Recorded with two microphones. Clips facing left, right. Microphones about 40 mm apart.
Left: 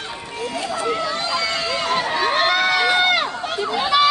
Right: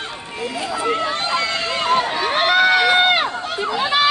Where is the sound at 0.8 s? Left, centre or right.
Right.